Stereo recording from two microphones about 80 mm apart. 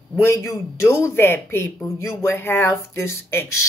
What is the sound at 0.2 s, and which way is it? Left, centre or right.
Speech, left.